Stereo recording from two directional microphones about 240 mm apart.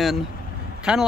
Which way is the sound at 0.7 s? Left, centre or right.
Centre.